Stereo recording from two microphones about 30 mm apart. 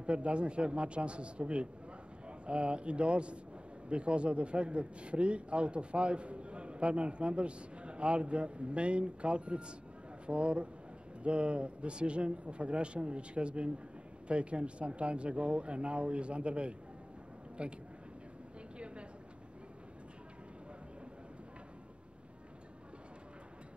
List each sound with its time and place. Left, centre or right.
0.0 s a man's voice: right